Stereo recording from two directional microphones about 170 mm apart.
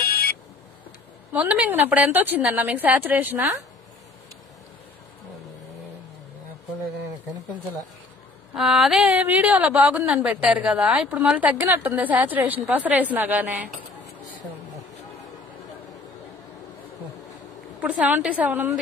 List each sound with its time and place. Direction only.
0.0 s vehicle: 65° left (ahead or behind)
1.3 s a woman's voice: 10° right (ahead or behind)
8.5 s a woman's voice: centre (ahead or behind)
17.8 s a woman's voice: 5° right (ahead or behind)